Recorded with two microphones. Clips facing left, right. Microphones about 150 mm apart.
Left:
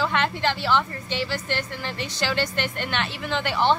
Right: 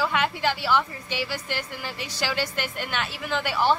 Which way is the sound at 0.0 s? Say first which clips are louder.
Left 1 dB; 10° right (ahead or behind).